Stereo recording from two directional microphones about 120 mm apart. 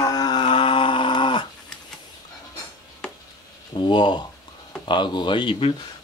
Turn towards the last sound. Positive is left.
turn(degrees=45)  # may be behind; listen again after turning